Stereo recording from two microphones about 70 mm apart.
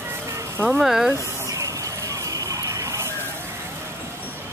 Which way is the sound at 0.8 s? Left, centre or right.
Centre.